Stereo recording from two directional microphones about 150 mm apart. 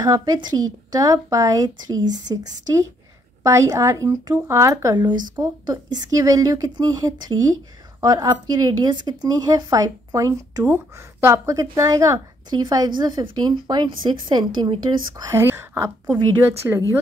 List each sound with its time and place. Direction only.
0.0 s speech: 25° right (ahead or behind)